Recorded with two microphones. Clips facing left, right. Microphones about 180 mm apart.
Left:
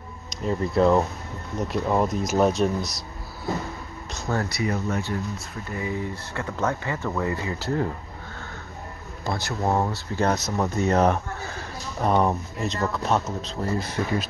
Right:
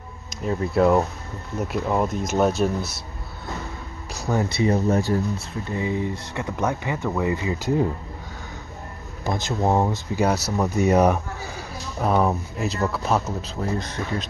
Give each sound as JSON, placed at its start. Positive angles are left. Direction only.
{"t": 0.3, "sound": "speech", "side_deg": -5}
{"t": 4.1, "sound": "speech", "side_deg": -15}
{"t": 4.5, "sound": "speech", "side_deg": -30}
{"t": 5.7, "sound": "speech", "side_deg": -20}
{"t": 9.2, "sound": "speech", "side_deg": -20}